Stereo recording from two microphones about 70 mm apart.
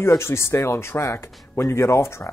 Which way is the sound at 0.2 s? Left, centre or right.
Left.